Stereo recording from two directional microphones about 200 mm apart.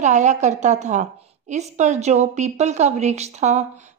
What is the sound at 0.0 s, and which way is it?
A woman's voice, 35° right (ahead or behind).